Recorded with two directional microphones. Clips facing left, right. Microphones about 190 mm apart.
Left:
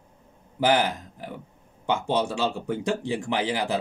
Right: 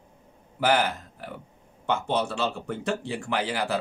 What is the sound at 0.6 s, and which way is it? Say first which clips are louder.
A man's voice: left 1 dB; 15° left (ahead or behind).